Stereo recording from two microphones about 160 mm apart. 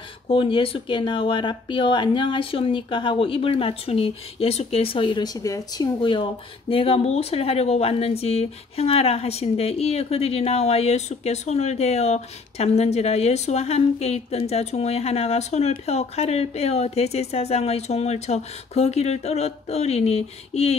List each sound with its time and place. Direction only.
0.3 s speech: 35° left (ahead or behind)